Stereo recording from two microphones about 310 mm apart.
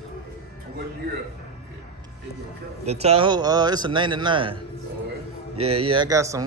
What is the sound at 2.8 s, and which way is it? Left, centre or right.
A man's voice, centre.